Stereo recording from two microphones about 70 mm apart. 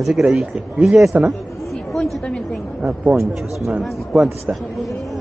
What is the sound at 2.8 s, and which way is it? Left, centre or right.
Speech, centre.